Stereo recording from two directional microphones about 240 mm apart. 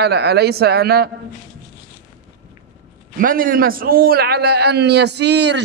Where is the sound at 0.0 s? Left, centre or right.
Right.